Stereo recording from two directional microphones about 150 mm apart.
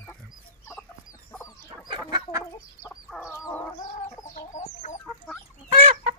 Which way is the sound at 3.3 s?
15° left (ahead or behind).